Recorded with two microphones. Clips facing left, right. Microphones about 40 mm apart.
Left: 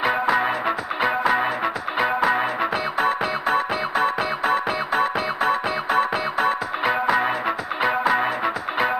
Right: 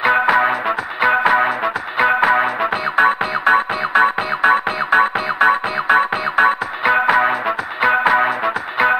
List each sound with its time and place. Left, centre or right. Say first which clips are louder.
0.0 s music: right 6 dB; right